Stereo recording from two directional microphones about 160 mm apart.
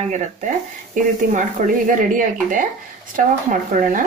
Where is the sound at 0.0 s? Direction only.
50° right (ahead or behind).